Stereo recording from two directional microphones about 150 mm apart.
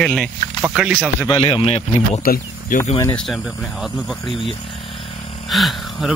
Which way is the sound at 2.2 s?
80° left.